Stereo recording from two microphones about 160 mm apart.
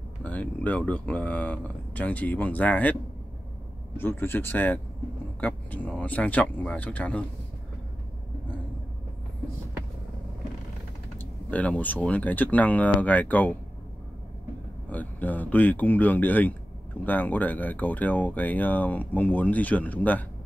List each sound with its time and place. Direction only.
0.2 s speech: 10° left (ahead or behind)
11.1 s speech: 10° left (ahead or behind)
14.9 s speech: 10° left (ahead or behind)